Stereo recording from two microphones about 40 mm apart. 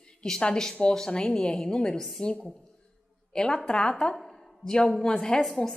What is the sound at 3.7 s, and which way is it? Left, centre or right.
Speech, left.